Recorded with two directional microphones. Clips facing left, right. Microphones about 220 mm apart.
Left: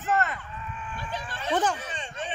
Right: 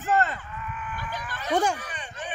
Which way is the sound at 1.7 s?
25° left (ahead or behind).